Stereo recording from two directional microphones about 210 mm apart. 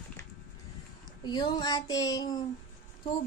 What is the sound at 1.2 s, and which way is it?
Speech, 20° left (ahead or behind).